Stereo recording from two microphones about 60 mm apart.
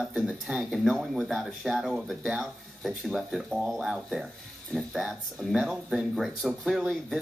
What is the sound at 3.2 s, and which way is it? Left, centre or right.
Speech, centre.